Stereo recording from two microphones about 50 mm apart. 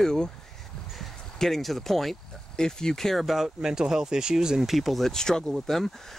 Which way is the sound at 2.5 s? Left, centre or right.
Centre.